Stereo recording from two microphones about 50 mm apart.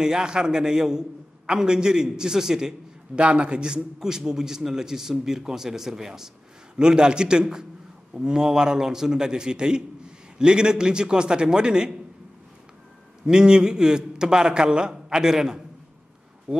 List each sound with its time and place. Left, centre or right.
0.0 s a man's voice: centre
13.2 s a man's voice: centre